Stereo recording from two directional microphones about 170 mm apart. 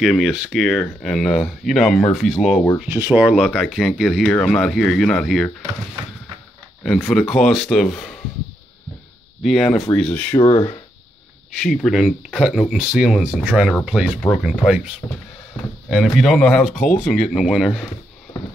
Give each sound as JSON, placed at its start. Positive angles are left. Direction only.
{"t": 0.0, "sound": "speech", "side_deg": 0}
{"t": 2.8, "sound": "speech", "side_deg": -10}
{"t": 6.8, "sound": "speech", "side_deg": 0}
{"t": 9.4, "sound": "speech", "side_deg": 0}
{"t": 11.5, "sound": "speech", "side_deg": 0}
{"t": 15.0, "sound": "speech", "side_deg": 15}
{"t": 15.9, "sound": "speech", "side_deg": 0}
{"t": 16.7, "sound": "speech", "side_deg": 45}
{"t": 17.0, "sound": "speech", "side_deg": 0}